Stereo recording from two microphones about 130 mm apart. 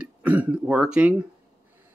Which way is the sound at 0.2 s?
10° right (ahead or behind).